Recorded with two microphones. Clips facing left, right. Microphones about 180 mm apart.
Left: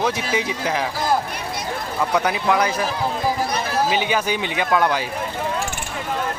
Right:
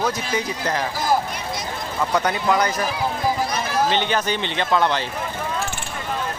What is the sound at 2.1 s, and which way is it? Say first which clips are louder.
Speech: even; 5° left (ahead or behind).